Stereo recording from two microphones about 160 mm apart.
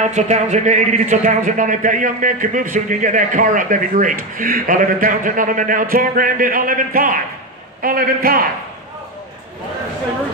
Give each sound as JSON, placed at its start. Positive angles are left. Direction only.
{"t": 0.0, "sound": "speech", "side_deg": -50}